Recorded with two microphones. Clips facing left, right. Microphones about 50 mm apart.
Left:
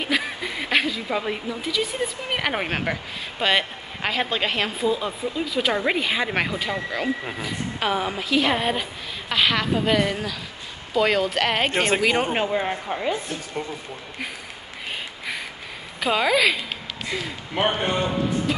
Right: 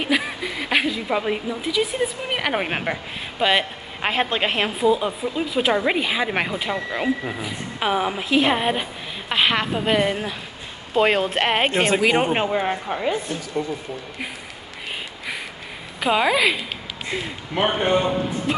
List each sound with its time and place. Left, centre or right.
0.0 s a woman's voice: centre
4.0 s a woman's voice: right
16.0 s speech: centre
17.8 s speech: centre